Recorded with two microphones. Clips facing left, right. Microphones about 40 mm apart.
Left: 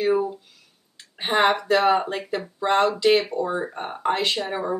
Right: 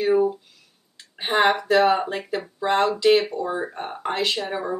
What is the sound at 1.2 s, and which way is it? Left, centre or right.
Speech, centre.